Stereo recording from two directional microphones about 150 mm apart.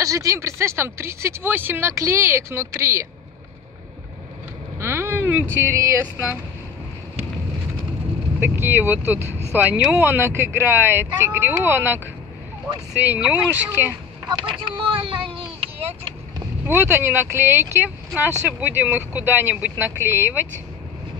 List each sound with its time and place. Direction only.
0.0 s speech: 20° right (ahead or behind)
4.7 s speech: 15° right (ahead or behind)
8.4 s speech: 15° right (ahead or behind)
13.0 s speech: 10° right (ahead or behind)
14.4 s vehicle: 35° right (ahead or behind)
16.6 s speech: 15° right (ahead or behind)